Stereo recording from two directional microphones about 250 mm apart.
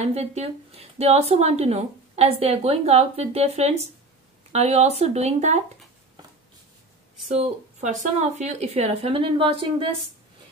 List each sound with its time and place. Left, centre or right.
0.0 s a woman's voice: right
7.2 s a woman's voice: right